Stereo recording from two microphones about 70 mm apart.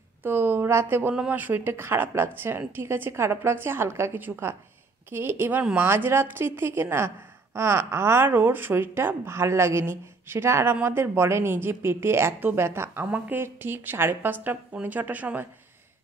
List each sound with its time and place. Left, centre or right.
0.2 s a woman's voice: right
13.0 s a woman's voice: right